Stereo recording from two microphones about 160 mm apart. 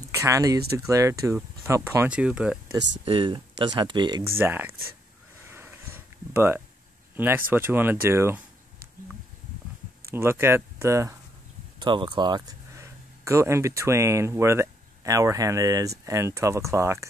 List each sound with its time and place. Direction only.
0.1 s speech: 20° right (ahead or behind)
2.0 s speech: 5° right (ahead or behind)
3.1 s speech: 30° right (ahead or behind)
4.4 s speech: 15° right (ahead or behind)
5.5 s a sound: 15° right (ahead or behind)
7.2 s speech: 15° right (ahead or behind)
10.1 s speech: 15° right (ahead or behind)
11.8 s speech: 30° right (ahead or behind)